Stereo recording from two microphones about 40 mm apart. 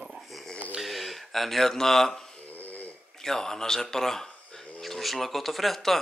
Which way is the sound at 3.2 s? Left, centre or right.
Centre.